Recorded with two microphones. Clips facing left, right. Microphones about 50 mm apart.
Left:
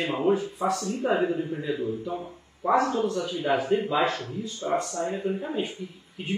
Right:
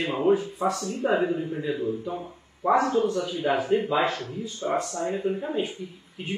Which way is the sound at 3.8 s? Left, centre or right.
Centre.